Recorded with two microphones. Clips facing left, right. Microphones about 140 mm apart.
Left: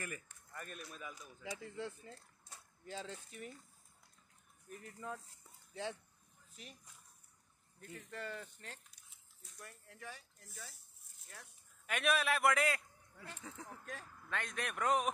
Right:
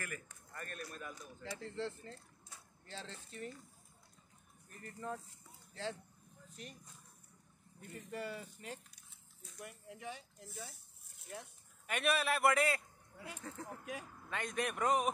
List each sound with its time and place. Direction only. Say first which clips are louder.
0.5 s speech: right 2 dB; 5° left (ahead or behind)
4.6 s a man's voice: right 2 dB; 5° left (ahead or behind)
6.5 s speech: right 4 dB; centre (ahead or behind)
7.8 s speech: right 3 dB; 10° right (ahead or behind)
11.8 s a man's voice: even; centre (ahead or behind)